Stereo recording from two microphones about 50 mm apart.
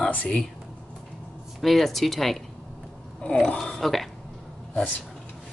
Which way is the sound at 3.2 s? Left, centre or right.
Centre.